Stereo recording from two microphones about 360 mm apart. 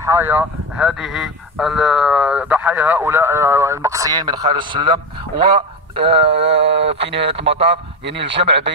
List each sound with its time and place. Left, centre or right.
0.0 s speech: centre
6.5 s speech: right
7.5 s speech: centre
8.0 s speech: right